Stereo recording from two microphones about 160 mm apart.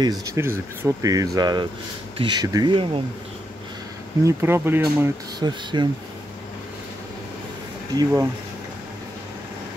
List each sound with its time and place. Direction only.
0.0 s speech: 20° right (ahead or behind)
4.2 s speech: 15° right (ahead or behind)
5.4 s speech: 30° right (ahead or behind)
7.9 s speech: 20° right (ahead or behind)